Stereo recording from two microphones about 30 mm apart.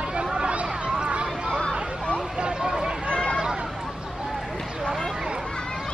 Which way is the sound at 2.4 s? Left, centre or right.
Right.